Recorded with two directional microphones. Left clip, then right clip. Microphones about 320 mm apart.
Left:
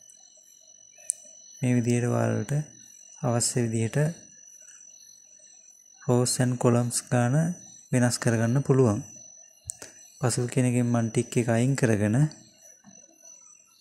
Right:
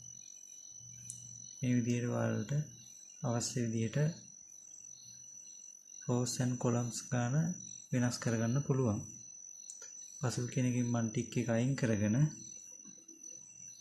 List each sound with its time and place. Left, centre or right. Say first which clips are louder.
1.6 s speech: left 9 dB; left
6.0 s speech: left 11 dB; left